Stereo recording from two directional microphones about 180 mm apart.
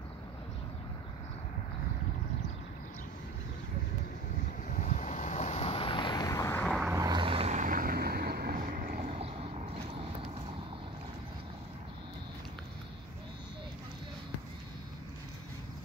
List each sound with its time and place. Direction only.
4.6 s vehicle: 45° left (ahead or behind); by 6.7 s 15° left (ahead or behind)
6.9 s vehicle: 20° right (ahead or behind)